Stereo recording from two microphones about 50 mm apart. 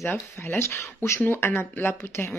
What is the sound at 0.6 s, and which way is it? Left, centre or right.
Speech, left.